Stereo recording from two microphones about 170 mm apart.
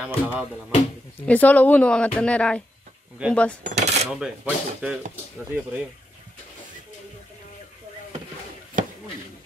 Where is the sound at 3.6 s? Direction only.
45° right (ahead or behind).